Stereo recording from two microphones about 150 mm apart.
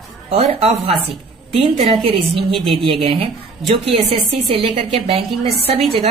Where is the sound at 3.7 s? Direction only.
40° right (ahead or behind).